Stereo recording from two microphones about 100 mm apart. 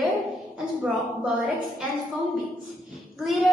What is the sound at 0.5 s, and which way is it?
A woman's voice, 5° right (ahead or behind).